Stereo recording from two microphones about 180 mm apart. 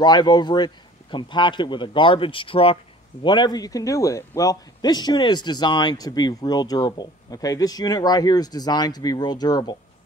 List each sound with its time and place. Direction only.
0.0 s speech: 25° left (ahead or behind)